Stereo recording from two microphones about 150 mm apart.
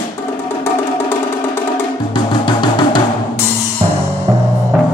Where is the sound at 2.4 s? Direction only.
30° left (ahead or behind).